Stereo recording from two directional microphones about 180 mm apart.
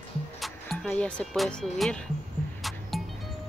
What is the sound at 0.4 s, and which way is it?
Speech, 5° left (ahead or behind).